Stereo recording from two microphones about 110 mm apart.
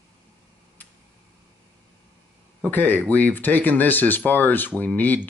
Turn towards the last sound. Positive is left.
turn(degrees=15)  # may be behind; listen again after turning